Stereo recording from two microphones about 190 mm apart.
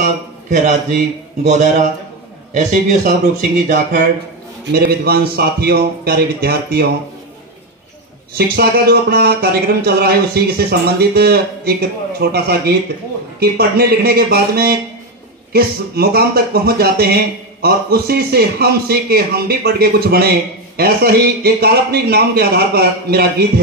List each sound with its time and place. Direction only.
0.0 s a man's voice: 45° right (ahead or behind)
2.5 s speech: 40° right (ahead or behind)
8.4 s speech: 55° right (ahead or behind)